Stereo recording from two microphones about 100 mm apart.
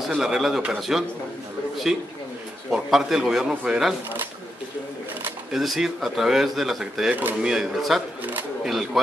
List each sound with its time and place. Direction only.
0.1 s speech: 5° right (ahead or behind)
2.7 s speech: 5° right (ahead or behind)
5.5 s speech: 5° right (ahead or behind)
7.2 s speech: 15° right (ahead or behind)
7.5 s speech: 5° right (ahead or behind)
8.2 s camera: 15° right (ahead or behind)
8.6 s speech: centre (ahead or behind)